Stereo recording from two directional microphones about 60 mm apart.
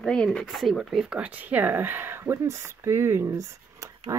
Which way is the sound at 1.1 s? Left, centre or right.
Right.